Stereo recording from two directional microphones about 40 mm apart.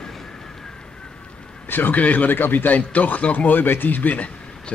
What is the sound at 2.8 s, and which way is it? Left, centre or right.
Speech, left.